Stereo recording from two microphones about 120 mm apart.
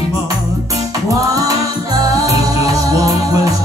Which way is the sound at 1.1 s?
30° right (ahead or behind).